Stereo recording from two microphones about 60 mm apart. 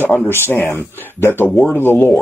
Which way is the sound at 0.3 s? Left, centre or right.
Left.